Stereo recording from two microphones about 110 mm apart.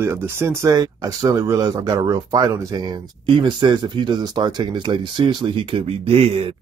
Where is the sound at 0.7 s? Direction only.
35° right (ahead or behind); by 6.5 s 60° right (ahead or behind).